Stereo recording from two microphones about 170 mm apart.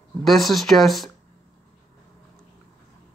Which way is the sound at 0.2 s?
Centre (ahead or behind).